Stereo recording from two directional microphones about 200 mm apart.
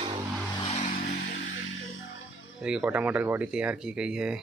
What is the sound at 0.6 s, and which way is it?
Vehicle, 35° left (ahead or behind).